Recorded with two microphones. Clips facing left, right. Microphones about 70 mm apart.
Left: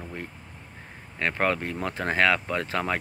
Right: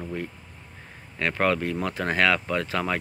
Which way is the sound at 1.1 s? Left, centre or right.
Left.